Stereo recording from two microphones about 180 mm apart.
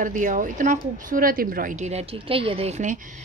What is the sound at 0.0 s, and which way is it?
A woman's voice, 45° right (ahead or behind).